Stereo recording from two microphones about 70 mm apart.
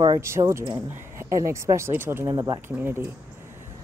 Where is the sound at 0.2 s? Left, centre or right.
Right.